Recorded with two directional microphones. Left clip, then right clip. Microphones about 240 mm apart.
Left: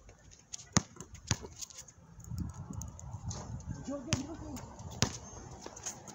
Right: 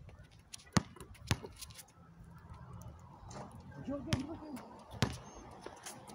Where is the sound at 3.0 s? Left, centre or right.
Centre.